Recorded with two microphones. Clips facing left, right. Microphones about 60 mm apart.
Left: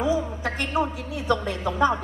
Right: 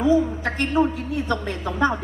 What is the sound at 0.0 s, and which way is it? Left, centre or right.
A woman's voice, right.